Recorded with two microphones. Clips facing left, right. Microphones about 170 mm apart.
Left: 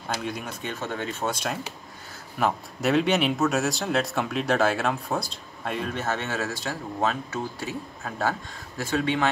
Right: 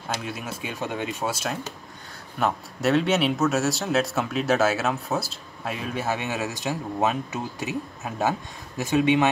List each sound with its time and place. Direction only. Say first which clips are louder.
0.1 s speech: even; 5° right (ahead or behind)